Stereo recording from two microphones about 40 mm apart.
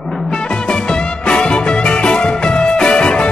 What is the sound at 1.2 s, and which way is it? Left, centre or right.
Music, left.